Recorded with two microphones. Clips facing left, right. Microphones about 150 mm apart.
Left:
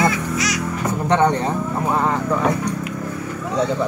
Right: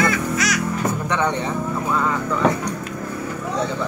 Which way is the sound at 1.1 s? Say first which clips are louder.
Left 8 dB; 35° left (ahead or behind).